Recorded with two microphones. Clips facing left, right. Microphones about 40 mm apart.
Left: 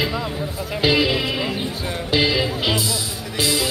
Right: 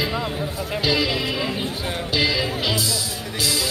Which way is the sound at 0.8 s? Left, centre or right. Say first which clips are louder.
Left 4 dB; left.